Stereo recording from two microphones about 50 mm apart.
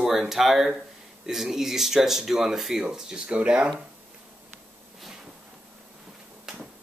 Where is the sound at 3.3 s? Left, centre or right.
Right.